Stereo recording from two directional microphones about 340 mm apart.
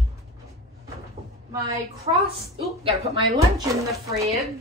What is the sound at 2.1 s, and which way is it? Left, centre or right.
Speech, centre.